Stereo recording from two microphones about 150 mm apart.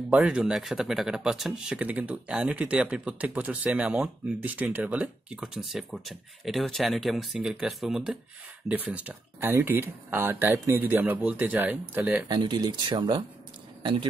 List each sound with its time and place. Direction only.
0.1 s speech: 5° right (ahead or behind)
12.3 s speech: 30° right (ahead or behind)